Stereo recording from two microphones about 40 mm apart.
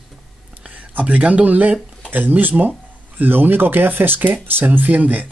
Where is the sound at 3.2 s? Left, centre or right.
Right.